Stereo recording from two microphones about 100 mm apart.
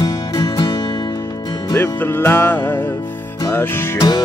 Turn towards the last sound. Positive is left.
turn(degrees=45)  # may be behind; listen again after turning